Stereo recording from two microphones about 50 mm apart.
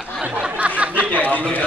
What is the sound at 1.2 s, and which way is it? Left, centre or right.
Speech, left.